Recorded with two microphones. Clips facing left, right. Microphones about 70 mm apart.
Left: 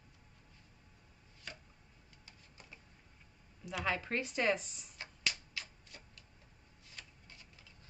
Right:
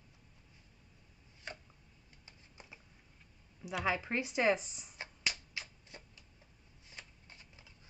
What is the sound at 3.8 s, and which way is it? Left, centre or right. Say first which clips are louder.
Speech: right 1 dB; centre.